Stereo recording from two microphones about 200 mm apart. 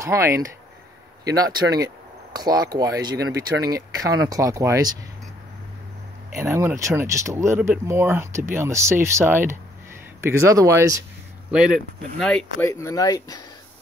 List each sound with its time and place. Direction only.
0.0 s speech: 15° right (ahead or behind)
6.4 s speech: 15° right (ahead or behind)
11.5 s speech: 5° right (ahead or behind)
12.6 s speech: 15° left (ahead or behind)